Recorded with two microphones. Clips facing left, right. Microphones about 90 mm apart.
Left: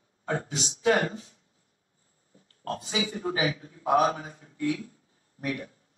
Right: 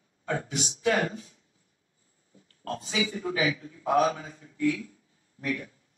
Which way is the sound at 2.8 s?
40° left (ahead or behind).